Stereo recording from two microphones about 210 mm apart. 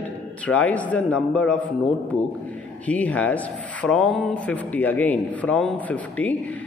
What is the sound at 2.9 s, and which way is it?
Speech, 5° left (ahead or behind).